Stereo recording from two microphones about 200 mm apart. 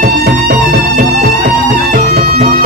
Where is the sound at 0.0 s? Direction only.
45° right (ahead or behind).